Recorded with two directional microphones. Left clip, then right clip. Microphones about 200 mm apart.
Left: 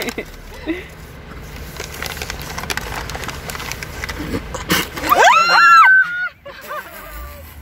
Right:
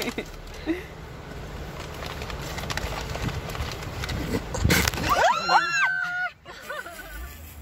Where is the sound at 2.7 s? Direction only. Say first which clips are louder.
Left 8 dB; 55° left (ahead or behind).